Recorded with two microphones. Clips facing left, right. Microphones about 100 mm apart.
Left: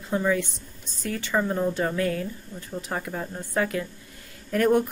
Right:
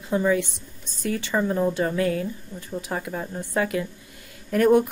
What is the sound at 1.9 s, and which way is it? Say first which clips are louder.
Speech: right 2 dB; 15° right (ahead or behind).